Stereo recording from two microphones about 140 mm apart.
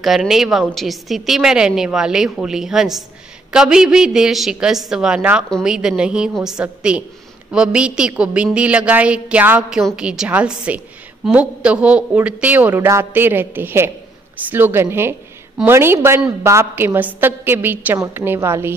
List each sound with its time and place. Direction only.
0.0 s a woman's voice: centre (ahead or behind); by 18.7 s 15° right (ahead or behind)